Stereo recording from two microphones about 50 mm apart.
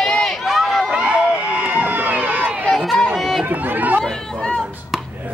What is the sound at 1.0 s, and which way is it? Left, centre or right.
Run, right.